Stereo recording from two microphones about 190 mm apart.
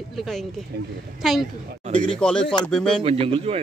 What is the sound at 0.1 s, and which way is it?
A man's voice, centre (ahead or behind).